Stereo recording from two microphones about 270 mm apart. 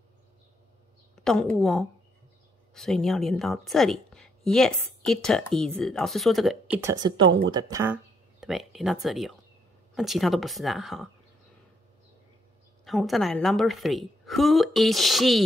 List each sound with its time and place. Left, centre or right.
1.2 s a woman's voice: centre
7.2 s speech: right
7.5 s a sound: centre
9.0 s a woman's voice: centre
12.8 s a woman's voice: centre